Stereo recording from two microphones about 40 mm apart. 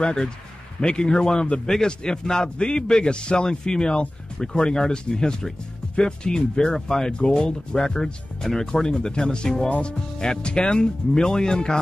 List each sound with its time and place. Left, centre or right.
0.0 s a man's voice: left
7.2 s a man's voice: left
8.0 s a man's voice: centre